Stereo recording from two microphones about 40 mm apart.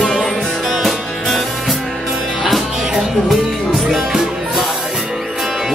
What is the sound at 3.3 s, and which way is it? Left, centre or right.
Music, centre.